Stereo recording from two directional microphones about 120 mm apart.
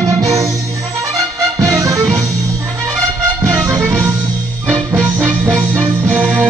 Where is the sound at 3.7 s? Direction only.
30° right (ahead or behind).